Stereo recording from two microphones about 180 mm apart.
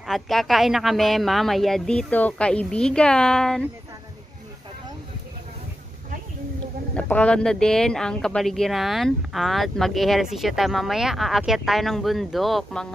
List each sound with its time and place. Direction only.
0.0 s speech: centre (ahead or behind)
7.0 s speech: 5° left (ahead or behind)